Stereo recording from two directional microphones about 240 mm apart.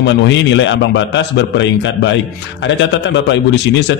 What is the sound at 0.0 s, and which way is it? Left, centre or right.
A man's voice, left.